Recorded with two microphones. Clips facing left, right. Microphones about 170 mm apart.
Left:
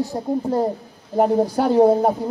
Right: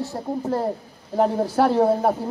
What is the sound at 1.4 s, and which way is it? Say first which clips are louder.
Speech: left 1 dB; 5° right (ahead or behind).